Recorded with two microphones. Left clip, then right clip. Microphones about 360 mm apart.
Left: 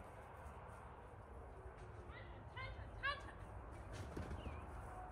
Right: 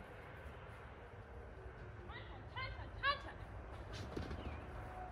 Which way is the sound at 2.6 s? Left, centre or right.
Centre.